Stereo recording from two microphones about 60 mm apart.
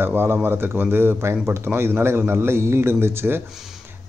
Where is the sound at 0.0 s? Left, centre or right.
Right.